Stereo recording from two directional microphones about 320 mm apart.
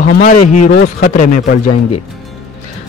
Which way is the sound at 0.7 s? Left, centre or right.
Left.